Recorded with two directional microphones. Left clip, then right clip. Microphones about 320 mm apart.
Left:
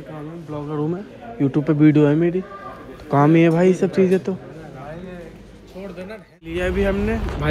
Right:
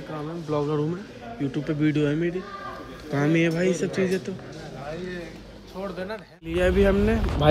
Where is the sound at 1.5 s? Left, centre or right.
Centre.